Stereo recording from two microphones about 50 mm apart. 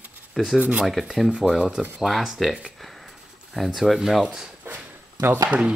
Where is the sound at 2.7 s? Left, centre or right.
Centre.